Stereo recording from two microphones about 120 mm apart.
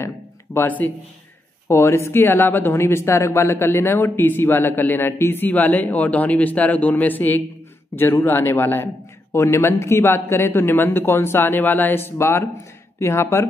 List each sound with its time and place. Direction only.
0.6 s a man's voice: 15° left (ahead or behind)